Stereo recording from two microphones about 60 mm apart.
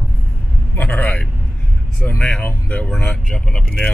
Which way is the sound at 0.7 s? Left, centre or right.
Left.